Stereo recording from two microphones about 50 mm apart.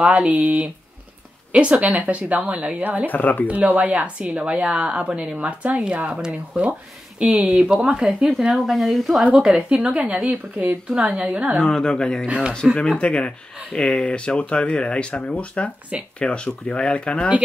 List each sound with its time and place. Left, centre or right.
0.0 s speech: right
0.3 s speech: right
3.1 s speech: left
3.4 s speech: right
7.5 s speech: centre
8.6 s speech: centre
9.3 s speech: centre
11.6 s speech: centre
12.6 s speech: centre
13.0 s speech: centre